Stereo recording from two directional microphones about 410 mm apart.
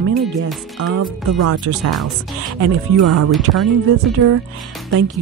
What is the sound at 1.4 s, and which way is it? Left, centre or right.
Speech, right.